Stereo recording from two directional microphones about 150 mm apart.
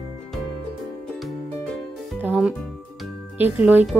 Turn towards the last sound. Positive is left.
turn(degrees=-10)  # may be behind; listen again after turning